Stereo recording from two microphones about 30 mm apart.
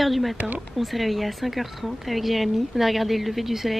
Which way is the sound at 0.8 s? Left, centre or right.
Centre.